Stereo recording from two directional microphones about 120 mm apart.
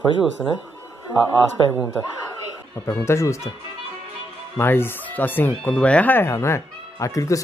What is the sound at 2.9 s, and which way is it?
Speech, 25° left (ahead or behind).